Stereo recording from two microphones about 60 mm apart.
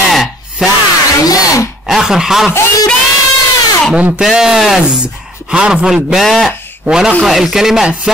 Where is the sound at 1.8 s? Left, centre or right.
Centre.